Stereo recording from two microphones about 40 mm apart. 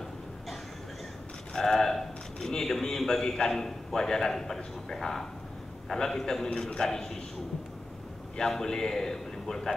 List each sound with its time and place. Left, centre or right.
1.5 s a man's voice: centre
8.4 s a man's voice: centre